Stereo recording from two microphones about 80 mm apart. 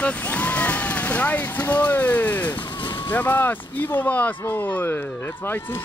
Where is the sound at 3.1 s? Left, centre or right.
Left.